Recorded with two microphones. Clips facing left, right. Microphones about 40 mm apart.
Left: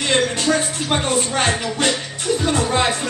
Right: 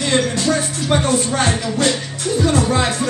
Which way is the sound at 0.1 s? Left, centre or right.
Left.